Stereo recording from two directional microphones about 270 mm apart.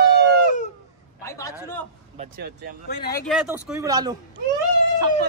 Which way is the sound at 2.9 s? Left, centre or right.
Left.